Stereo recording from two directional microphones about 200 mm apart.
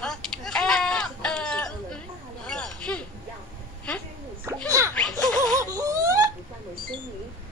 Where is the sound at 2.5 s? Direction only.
5° left (ahead or behind).